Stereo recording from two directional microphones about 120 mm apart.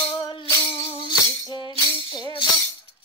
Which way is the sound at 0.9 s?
40° left (ahead or behind).